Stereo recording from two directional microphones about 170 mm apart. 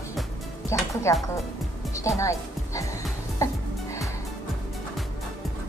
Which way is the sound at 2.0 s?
20° left (ahead or behind).